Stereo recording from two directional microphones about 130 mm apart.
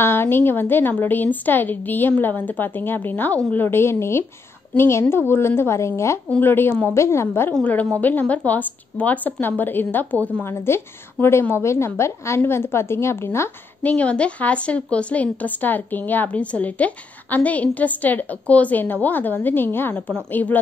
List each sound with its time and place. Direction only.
0.0 s a woman's voice: 15° left (ahead or behind)